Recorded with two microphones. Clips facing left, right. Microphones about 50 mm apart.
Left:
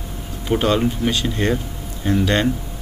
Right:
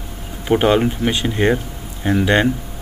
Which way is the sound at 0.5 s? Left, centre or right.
Right.